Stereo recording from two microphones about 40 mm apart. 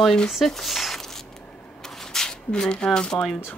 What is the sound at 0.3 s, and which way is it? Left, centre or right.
Speech, centre.